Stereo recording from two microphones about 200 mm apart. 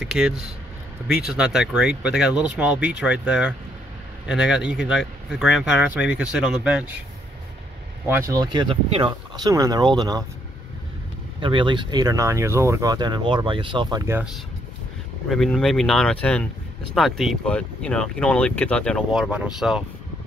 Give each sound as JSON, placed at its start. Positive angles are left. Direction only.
{"t": 0.0, "sound": "speech", "side_deg": -5}
{"t": 8.1, "sound": "speech", "side_deg": -20}
{"t": 11.3, "sound": "speech", "side_deg": -25}